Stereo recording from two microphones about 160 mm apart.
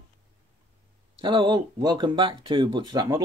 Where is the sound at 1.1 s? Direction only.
30° right (ahead or behind).